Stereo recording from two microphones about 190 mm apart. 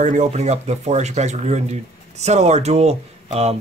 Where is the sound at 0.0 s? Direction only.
40° right (ahead or behind).